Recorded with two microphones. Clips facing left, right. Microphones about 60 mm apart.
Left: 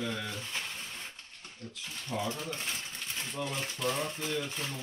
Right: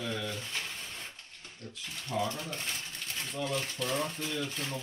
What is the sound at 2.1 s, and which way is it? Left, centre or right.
Speech, centre.